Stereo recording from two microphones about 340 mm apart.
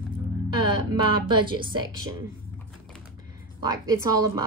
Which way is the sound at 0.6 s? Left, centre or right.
Centre.